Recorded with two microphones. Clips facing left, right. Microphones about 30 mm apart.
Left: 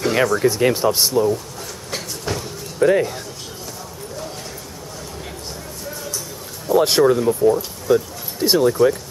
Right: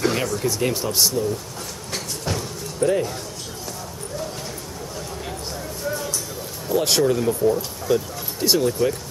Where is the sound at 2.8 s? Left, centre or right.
Left.